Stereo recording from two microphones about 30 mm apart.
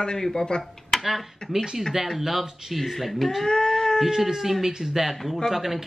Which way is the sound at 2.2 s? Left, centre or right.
Centre.